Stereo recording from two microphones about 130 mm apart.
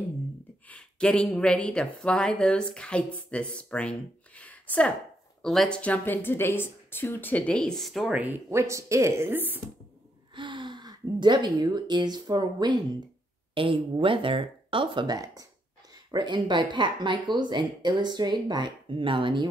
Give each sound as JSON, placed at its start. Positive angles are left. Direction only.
{"t": 0.7, "sound": "speech", "side_deg": 5}
{"t": 4.4, "sound": "a sound", "side_deg": 10}
{"t": 5.4, "sound": "speech", "side_deg": 0}
{"t": 8.2, "sound": "a woman's voice", "side_deg": -15}
{"t": 10.3, "sound": "a woman's voice", "side_deg": -40}